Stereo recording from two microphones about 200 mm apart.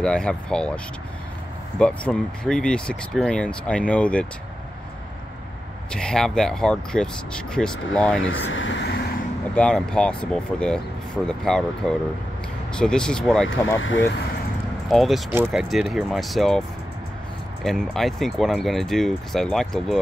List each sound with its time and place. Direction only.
0.0 s speech: 5° left (ahead or behind)
1.8 s speech: 5° left (ahead or behind)
5.9 s speech: 5° left (ahead or behind)
8.2 s speech: 75° left (ahead or behind)
9.6 s speech: 5° left (ahead or behind)
13.7 s speech: 75° left (ahead or behind)
14.9 s speech: centre (ahead or behind)
17.6 s speech: centre (ahead or behind)